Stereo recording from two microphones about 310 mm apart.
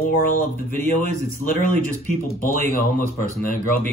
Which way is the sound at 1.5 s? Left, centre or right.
Left.